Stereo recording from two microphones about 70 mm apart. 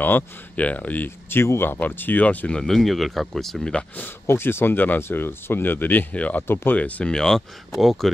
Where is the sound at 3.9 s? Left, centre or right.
Left.